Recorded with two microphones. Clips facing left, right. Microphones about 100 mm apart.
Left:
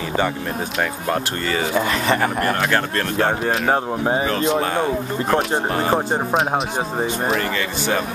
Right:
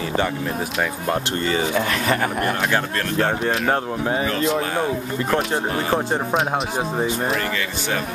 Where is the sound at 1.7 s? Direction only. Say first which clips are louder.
Left 2 dB; 5° left (ahead or behind).